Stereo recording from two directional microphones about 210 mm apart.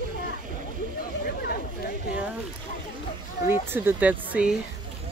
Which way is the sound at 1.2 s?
45° left (ahead or behind).